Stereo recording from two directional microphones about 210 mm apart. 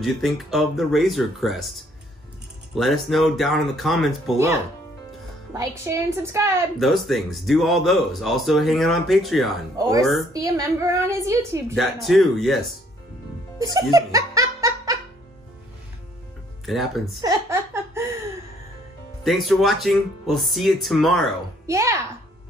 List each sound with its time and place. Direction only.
0.0 s speech: centre (ahead or behind)
5.5 s a woman's voice: 15° right (ahead or behind)
6.8 s speech: centre (ahead or behind)
9.8 s a woman's voice: 15° right (ahead or behind)
11.7 s speech: centre (ahead or behind)
13.6 s music: 15° right (ahead or behind)
16.6 s speech: centre (ahead or behind)
17.2 s laughter: 15° right (ahead or behind)
19.2 s speech: centre (ahead or behind)
21.6 s a child's voice: 15° right (ahead or behind)